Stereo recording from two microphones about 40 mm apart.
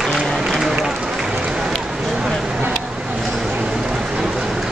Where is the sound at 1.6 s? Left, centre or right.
Centre.